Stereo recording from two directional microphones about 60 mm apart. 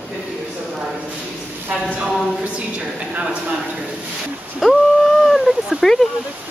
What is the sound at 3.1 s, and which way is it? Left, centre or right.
Speech, right.